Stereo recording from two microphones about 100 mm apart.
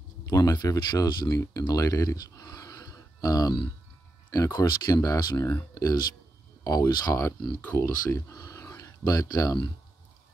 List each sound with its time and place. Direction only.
0.2 s speech: 35° left (ahead or behind)
5.3 s speech: 25° left (ahead or behind)